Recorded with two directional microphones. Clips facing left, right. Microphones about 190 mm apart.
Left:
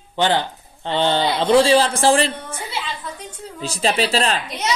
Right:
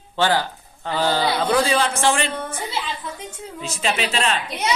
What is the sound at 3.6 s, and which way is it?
Speech, 35° left (ahead or behind).